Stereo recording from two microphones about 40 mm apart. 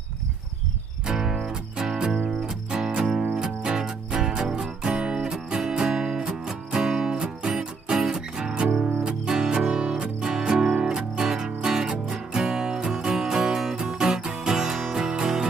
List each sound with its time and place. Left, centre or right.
1.0 s music: centre
2.4 s music: centre
13.0 s music: centre